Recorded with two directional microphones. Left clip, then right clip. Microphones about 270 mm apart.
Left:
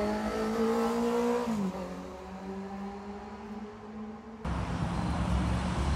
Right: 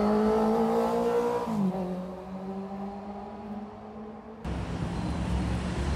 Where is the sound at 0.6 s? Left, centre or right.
Right.